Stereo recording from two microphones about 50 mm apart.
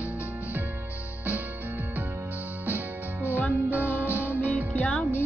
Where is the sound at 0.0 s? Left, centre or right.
Right.